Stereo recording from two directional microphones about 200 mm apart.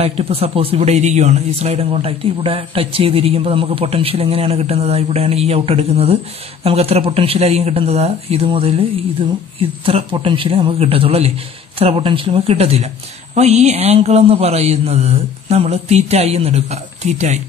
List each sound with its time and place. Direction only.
0.0 s speech: 30° right (ahead or behind)
1.9 s speech: 20° right (ahead or behind)